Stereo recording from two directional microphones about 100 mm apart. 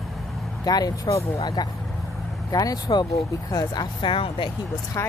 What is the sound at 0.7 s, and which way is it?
Speech, 40° left (ahead or behind).